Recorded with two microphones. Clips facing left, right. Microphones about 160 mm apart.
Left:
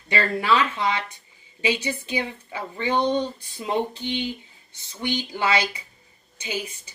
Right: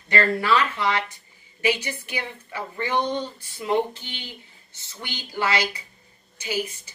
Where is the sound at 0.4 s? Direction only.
20° left (ahead or behind).